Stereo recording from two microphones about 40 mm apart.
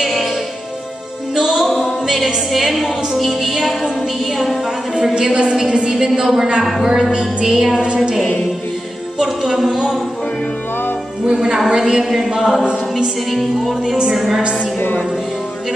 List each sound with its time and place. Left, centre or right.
0.0 s music: centre
1.3 s music: centre
4.9 s a woman's voice: centre
7.1 s a woman's voice: right
7.4 s a woman's voice: centre
9.2 s music: centre
11.2 s a woman's voice: centre
12.4 s music: centre